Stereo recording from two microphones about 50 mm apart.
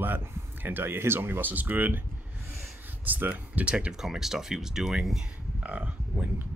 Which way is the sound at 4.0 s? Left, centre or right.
Centre.